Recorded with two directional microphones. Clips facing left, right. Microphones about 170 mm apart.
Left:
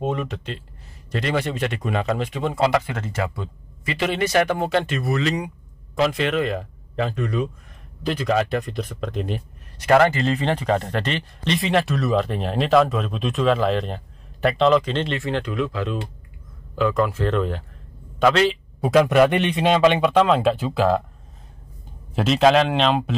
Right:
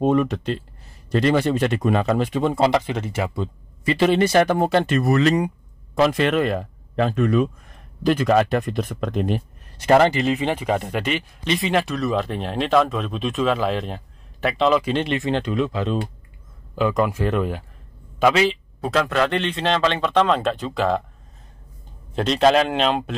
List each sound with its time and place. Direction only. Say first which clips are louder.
0.0 s a man's voice: right 7 dB; 45° right (ahead or behind); by 3.0 s 25° right (ahead or behind)
3.0 s speech: right 2 dB; 15° right (ahead or behind)
3.8 s a man's voice: right 6 dB; 35° right (ahead or behind); by 9.4 s 50° right (ahead or behind)
9.8 s a man's voice: right 1 dB; 25° right (ahead or behind)
10.2 s speech: even; 10° right (ahead or behind)
18.8 s a man's voice: left 6 dB; 15° left (ahead or behind)
22.1 s speech: even; centre (ahead or behind)